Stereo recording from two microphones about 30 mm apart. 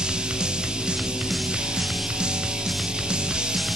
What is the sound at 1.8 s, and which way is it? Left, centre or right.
Music, centre.